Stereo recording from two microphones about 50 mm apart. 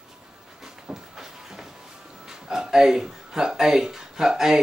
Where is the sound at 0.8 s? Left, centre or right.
Centre.